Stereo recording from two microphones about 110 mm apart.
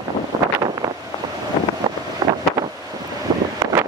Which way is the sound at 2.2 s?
35° right (ahead or behind).